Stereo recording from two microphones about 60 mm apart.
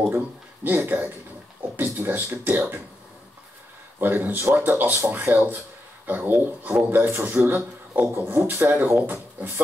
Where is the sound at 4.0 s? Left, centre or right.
Right.